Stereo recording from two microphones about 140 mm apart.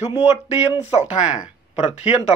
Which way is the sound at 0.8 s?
55° left (ahead or behind).